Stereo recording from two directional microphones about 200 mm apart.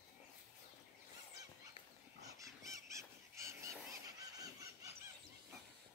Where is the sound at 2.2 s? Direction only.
15° right (ahead or behind).